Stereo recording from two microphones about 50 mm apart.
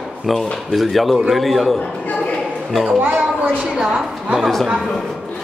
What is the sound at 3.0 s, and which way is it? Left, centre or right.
Speech, right.